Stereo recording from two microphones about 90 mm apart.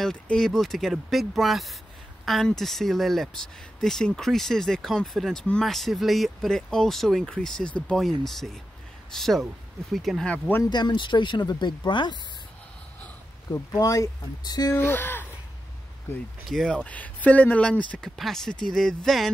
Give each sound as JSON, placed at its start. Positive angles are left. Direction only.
{"t": 0.0, "sound": "speech", "side_deg": 5}
{"t": 10.2, "sound": "speech", "side_deg": 15}
{"t": 10.7, "sound": "speech", "side_deg": 55}
{"t": 13.5, "sound": "speech", "side_deg": 35}
{"t": 14.7, "sound": "speech", "side_deg": 25}
{"t": 16.4, "sound": "speech", "side_deg": 5}